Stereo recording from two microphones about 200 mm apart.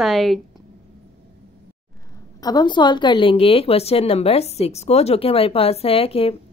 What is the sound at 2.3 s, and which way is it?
A woman's voice, 20° left (ahead or behind).